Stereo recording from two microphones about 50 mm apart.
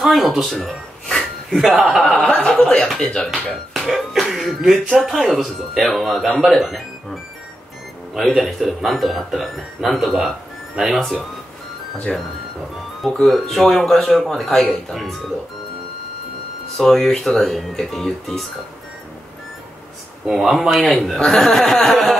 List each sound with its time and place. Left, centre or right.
0.0 s speech: centre
1.1 s a sound: centre
2.0 s a sound: left
2.5 s speech: centre
3.9 s speech: centre
8.2 s speech: centre
10.8 s speech: centre
12.1 s speech: centre
16.7 s speech: centre
20.2 s speech: centre